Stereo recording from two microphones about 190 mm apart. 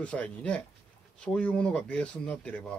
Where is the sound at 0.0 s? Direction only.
5° left (ahead or behind).